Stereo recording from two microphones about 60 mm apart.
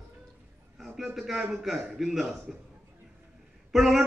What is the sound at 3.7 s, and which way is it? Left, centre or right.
Speech, centre.